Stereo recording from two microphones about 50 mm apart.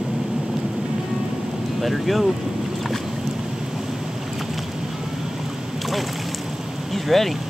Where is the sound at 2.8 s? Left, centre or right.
Centre.